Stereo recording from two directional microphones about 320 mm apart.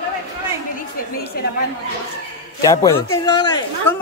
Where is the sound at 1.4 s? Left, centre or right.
Left.